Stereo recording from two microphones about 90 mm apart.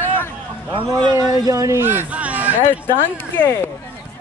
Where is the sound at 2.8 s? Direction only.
25° left (ahead or behind).